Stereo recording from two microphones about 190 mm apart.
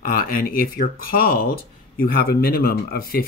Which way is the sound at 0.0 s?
50° left (ahead or behind).